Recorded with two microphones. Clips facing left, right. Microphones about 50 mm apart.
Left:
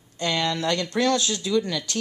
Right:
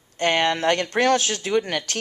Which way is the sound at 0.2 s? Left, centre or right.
Right.